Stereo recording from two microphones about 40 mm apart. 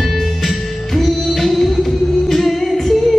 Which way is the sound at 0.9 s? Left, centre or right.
Centre.